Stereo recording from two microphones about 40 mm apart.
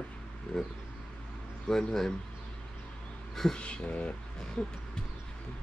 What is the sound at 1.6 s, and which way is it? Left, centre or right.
Speech, centre.